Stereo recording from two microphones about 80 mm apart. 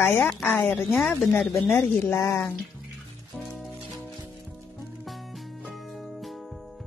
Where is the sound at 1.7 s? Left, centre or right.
Left.